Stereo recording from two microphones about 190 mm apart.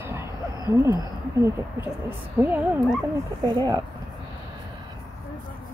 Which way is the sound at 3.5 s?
20° right (ahead or behind).